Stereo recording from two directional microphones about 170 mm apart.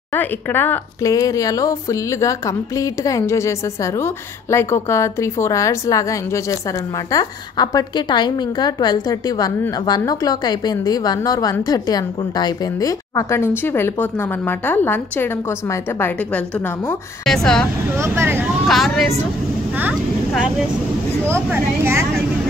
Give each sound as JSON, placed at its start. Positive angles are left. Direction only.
{"t": 0.1, "sound": "a woman's voice", "side_deg": 10}
{"t": 17.9, "sound": "speech", "side_deg": -15}
{"t": 18.7, "sound": "speech", "side_deg": 0}